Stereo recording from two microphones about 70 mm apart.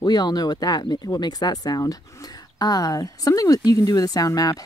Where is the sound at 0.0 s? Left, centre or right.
Left.